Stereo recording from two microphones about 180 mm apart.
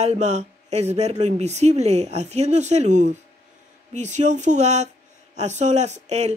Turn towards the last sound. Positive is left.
turn(degrees=-40)  # may be behind; listen again after turning